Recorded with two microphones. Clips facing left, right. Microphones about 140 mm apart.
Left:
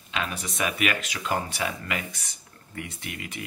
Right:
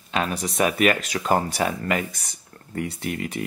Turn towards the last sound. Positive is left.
turn(degrees=-40)  # may be behind; listen again after turning